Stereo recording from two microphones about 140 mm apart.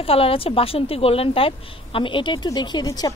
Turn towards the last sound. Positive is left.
turn(degrees=30)  # may be behind; listen again after turning